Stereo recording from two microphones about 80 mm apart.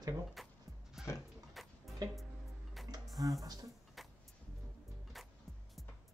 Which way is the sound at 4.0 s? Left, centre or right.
Centre.